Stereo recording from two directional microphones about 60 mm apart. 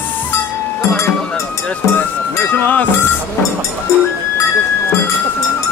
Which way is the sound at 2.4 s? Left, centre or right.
Left.